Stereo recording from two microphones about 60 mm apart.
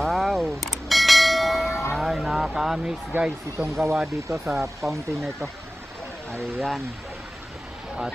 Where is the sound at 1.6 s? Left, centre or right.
Left.